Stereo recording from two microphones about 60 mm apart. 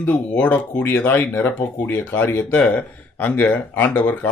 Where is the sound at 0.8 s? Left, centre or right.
Left.